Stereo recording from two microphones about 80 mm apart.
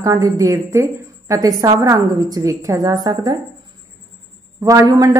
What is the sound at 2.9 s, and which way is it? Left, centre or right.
Speech, right.